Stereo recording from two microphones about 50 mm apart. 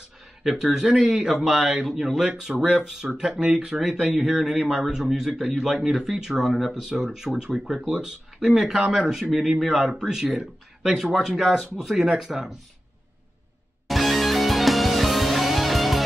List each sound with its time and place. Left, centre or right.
0.4 s speech: centre
13.8 s music: centre